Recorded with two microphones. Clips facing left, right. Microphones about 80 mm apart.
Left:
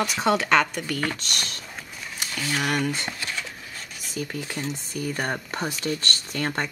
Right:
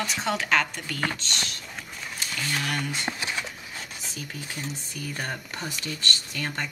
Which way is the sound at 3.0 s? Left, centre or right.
Centre.